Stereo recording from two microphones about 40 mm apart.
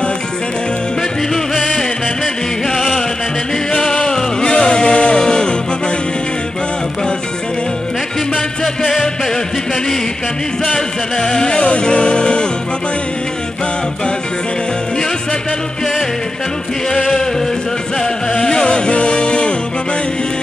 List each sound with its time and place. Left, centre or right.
1.3 s music: centre
3.7 s music: left
10.6 s music: centre
18.3 s music: centre